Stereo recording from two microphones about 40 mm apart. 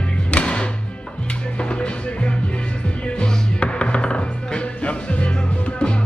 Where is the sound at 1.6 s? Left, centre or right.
Left.